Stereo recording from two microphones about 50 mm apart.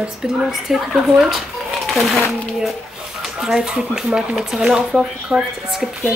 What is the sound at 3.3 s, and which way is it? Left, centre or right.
Speech, centre.